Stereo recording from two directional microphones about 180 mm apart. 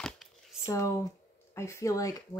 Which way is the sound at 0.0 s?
Centre (ahead or behind).